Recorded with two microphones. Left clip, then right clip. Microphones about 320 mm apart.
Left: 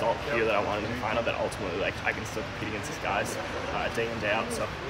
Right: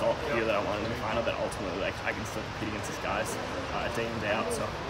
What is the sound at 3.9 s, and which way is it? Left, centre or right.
Speech, centre.